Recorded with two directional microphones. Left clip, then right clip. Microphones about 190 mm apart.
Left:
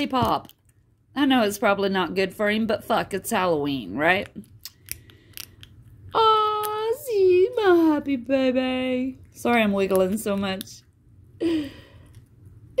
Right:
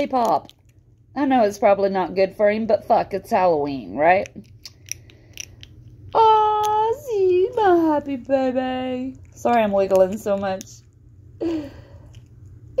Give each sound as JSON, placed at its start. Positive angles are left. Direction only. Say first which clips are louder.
{"t": 0.0, "sound": "speech", "louder": "right 4 dB", "side_deg": 35}
{"t": 5.0, "sound": "scissors", "louder": "right 4 dB", "side_deg": 25}
{"t": 9.4, "sound": "speech", "louder": "right 4 dB", "side_deg": 40}
{"t": 11.3, "sound": "a sound", "louder": "left 1 dB", "side_deg": 40}